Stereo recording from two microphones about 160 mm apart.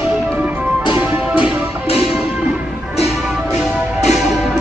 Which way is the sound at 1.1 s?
5° right (ahead or behind).